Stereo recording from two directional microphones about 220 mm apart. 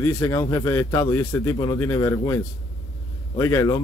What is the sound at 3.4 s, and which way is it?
Speech, 15° left (ahead or behind).